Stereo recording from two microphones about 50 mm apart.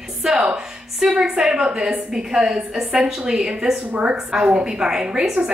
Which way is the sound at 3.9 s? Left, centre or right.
Right.